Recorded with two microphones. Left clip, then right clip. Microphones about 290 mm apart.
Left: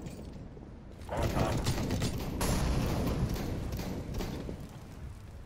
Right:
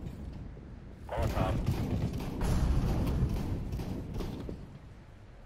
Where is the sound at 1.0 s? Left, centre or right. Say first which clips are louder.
Left 1 dB; centre.